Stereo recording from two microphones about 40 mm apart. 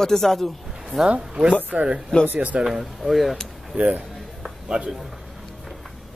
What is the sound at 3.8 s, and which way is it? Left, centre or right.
Speech, right.